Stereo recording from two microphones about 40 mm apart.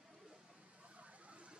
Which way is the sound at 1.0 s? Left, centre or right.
Right.